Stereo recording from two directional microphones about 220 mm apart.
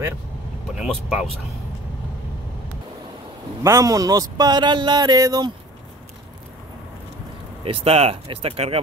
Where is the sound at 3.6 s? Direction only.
15° right (ahead or behind).